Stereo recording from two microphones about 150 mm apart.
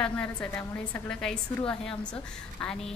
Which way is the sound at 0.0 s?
10° left (ahead or behind).